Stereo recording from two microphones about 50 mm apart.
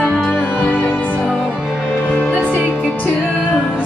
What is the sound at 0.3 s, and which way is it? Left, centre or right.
Music, left.